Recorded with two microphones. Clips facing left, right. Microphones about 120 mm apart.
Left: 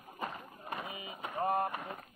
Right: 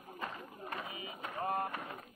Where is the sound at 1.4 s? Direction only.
25° left (ahead or behind).